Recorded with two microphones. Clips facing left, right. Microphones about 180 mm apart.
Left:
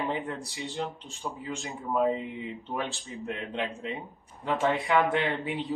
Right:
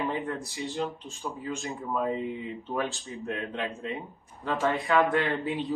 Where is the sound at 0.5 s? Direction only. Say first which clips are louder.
Right 2 dB; 15° left (ahead or behind).